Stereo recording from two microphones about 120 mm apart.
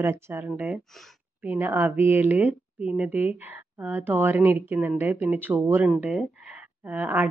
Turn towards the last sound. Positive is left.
turn(degrees=-15)  # may be behind; listen again after turning